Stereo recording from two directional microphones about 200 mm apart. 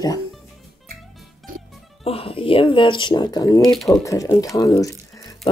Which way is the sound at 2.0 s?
30° left (ahead or behind).